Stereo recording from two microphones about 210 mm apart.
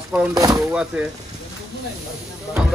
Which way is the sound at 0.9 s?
5° right (ahead or behind).